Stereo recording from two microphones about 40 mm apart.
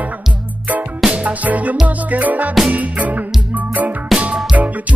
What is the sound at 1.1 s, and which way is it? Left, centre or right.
Music, right.